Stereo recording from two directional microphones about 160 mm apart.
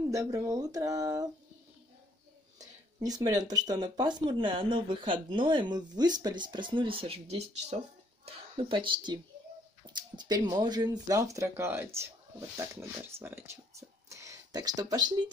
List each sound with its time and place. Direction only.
0.1 s speech: 20° right (ahead or behind)
3.0 s speech: 20° right (ahead or behind)